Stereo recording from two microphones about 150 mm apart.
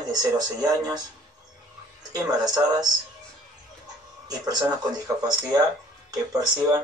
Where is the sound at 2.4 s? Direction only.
25° right (ahead or behind).